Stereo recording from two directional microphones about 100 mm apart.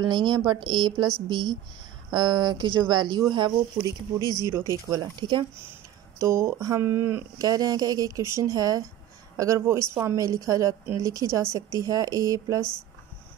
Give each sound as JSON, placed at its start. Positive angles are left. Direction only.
{"t": 0.0, "sound": "speech", "side_deg": -50}
{"t": 3.8, "sound": "speech", "side_deg": 40}
{"t": 4.6, "sound": "a woman's voice", "side_deg": -35}
{"t": 6.1, "sound": "speech", "side_deg": -30}
{"t": 7.3, "sound": "a woman's voice", "side_deg": -40}
{"t": 9.6, "sound": "a woman's voice", "side_deg": -25}